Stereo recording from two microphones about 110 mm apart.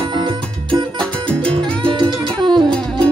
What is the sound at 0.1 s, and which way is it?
Music, 45° right (ahead or behind).